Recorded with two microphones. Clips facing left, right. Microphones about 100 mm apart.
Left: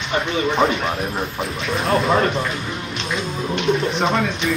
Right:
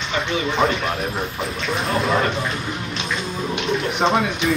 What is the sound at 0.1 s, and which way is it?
Speech, 10° left (ahead or behind).